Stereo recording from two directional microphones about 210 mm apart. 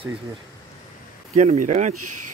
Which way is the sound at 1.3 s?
35° right (ahead or behind).